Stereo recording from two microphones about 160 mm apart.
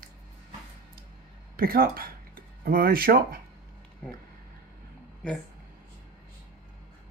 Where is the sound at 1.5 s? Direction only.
65° right (ahead or behind).